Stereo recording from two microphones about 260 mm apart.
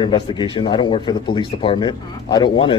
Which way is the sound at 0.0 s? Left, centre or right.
Centre.